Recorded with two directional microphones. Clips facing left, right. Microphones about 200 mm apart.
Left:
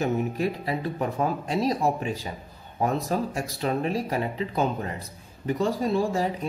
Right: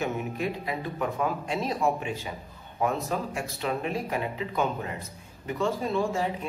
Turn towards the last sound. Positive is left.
turn(degrees=35)  # may be behind; listen again after turning